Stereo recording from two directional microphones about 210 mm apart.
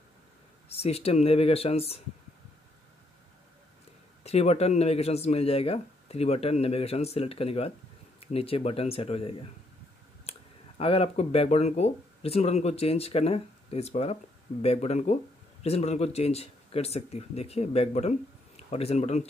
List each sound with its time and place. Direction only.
0.7 s speech: 30° left (ahead or behind)
4.2 s speech: 30° left (ahead or behind)
10.3 s clicking: 30° left (ahead or behind)
10.8 s speech: 25° left (ahead or behind)